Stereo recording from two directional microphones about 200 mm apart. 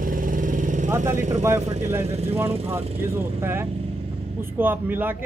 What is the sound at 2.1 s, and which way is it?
Speech, 30° right (ahead or behind).